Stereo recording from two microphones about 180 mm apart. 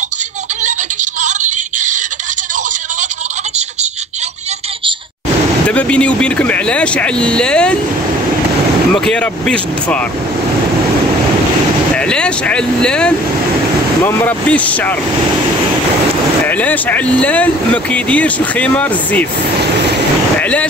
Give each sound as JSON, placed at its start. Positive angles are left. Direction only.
{"t": 1.2, "sound": "synthetic singing", "side_deg": -45}
{"t": 5.7, "sound": "speech", "side_deg": 5}
{"t": 8.9, "sound": "speech", "side_deg": 5}
{"t": 11.9, "sound": "speech", "side_deg": 5}
{"t": 16.4, "sound": "speech", "side_deg": 10}
{"t": 20.3, "sound": "vehicle", "side_deg": 5}